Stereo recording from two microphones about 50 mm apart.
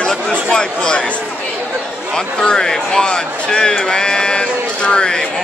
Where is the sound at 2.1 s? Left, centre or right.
Centre.